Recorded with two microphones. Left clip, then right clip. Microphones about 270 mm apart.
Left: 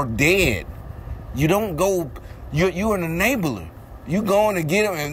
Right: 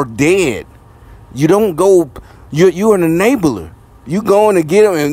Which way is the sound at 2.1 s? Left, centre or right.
Right.